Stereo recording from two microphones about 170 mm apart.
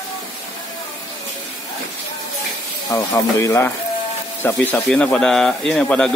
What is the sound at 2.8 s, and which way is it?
Speech, 20° left (ahead or behind).